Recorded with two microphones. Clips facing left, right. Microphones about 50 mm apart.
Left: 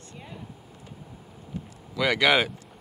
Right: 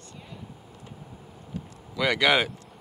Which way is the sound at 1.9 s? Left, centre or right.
Centre.